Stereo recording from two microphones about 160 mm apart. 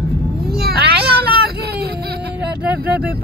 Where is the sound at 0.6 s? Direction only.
75° right (ahead or behind).